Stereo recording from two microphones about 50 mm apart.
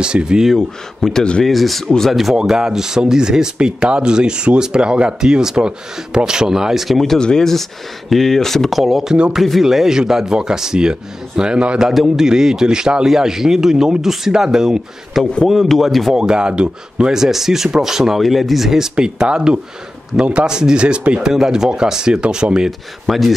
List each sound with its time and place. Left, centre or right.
0.0 s speech: centre
0.6 s speech: centre
1.4 s speech: centre
2.4 s speech: centre
7.2 s speech: centre
11.9 s speech: centre
16.2 s speech: centre
18.9 s speech: centre
21.3 s speech: centre
22.7 s speech: centre